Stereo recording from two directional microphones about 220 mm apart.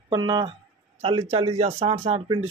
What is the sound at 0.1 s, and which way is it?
Speech, 20° right (ahead or behind).